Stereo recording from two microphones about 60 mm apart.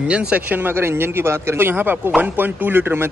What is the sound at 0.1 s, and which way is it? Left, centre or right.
Speech, centre.